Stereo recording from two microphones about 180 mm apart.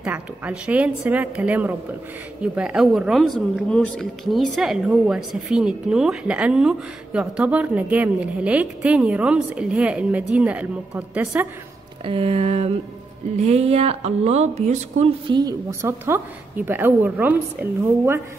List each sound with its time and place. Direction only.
0.0 s a woman's voice: 5° right (ahead or behind)
12.0 s speech: 30° right (ahead or behind)
15.3 s a woman's voice: 20° right (ahead or behind)